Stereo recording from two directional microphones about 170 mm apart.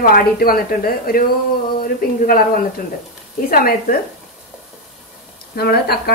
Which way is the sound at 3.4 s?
60° left (ahead or behind).